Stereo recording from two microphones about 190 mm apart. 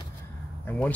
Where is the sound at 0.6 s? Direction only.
5° left (ahead or behind).